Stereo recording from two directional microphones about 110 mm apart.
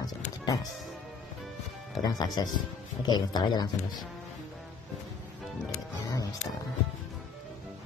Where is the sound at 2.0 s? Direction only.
35° left (ahead or behind).